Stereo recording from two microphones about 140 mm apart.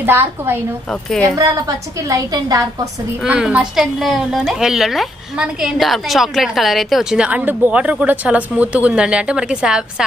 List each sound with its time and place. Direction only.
0.0 s a woman's voice: 15° right (ahead or behind)
2.0 s a woman's voice: 25° right (ahead or behind)
3.3 s a woman's voice: 5° right (ahead or behind)